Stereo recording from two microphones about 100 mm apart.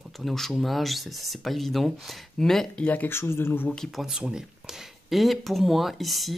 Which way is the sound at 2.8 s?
15° left (ahead or behind).